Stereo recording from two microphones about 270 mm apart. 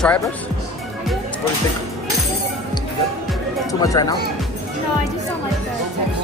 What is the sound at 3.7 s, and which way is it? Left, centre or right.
Speech, centre.